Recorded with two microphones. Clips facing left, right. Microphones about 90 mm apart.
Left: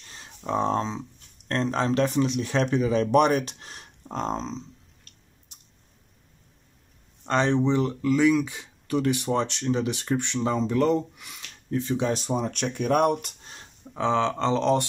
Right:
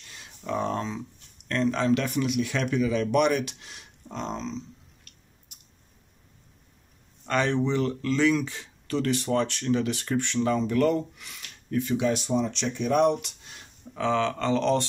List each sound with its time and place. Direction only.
0.0 s a sound: 35° left (ahead or behind)
1.5 s speech: 35° left (ahead or behind)
7.2 s speech: 25° left (ahead or behind)